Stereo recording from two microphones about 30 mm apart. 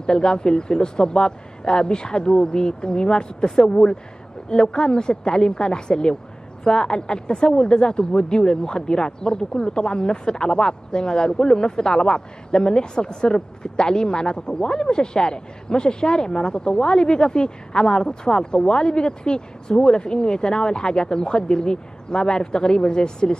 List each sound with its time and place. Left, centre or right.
0.0 s a woman's voice: left